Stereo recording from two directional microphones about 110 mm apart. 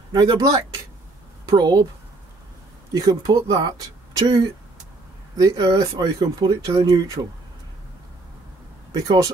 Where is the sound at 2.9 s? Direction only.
35° right (ahead or behind).